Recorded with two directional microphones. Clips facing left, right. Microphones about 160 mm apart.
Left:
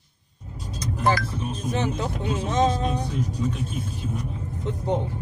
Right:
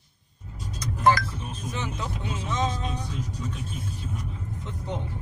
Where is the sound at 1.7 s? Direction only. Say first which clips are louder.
Left 7 dB; 35° left (ahead or behind).